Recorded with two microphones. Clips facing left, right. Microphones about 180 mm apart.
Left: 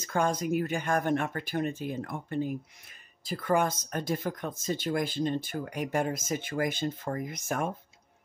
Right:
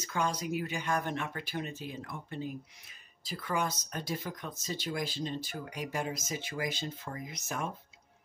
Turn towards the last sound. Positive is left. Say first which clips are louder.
# left 6 dB
turn(degrees=55)  # may be behind; listen again after turning